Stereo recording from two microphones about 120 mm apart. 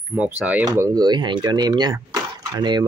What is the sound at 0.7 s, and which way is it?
Speech, 30° right (ahead or behind).